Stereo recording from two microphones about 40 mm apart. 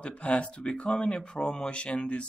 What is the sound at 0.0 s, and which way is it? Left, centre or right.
Speech, left.